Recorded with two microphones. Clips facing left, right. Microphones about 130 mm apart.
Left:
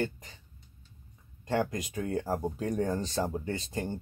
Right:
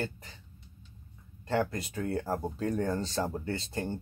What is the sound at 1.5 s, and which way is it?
Speech, 15° left (ahead or behind).